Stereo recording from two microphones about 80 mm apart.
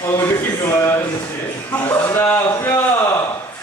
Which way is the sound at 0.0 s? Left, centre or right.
Left.